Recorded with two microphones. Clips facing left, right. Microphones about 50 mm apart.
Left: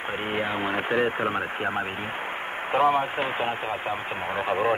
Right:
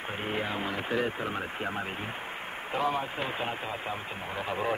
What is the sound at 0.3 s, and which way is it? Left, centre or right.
Speech, left.